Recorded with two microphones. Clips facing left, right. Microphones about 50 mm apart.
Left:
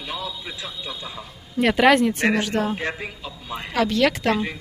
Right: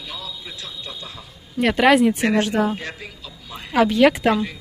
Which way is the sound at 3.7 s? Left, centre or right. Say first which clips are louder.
Right 5 dB; centre.